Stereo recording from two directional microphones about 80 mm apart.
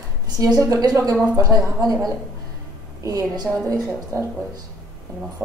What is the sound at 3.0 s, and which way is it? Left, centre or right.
Speech, right.